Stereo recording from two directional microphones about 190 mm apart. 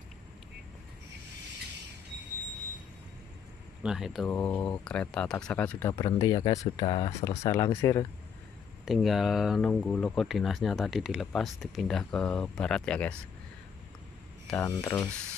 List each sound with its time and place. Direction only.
3.8 s speech: 5° right (ahead or behind)
4.3 s speech: 10° left (ahead or behind)
5.9 s speech: 20° left (ahead or behind)
7.2 s speech: 15° left (ahead or behind)
8.8 s speech: centre (ahead or behind)
14.6 s speech: 15° left (ahead or behind)